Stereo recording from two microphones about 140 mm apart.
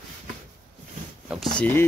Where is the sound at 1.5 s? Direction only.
10° left (ahead or behind).